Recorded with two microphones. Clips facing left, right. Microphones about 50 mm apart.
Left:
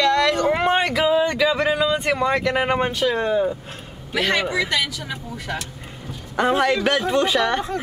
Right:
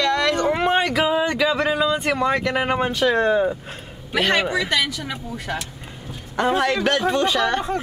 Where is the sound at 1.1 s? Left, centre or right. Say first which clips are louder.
Left 2 dB; centre.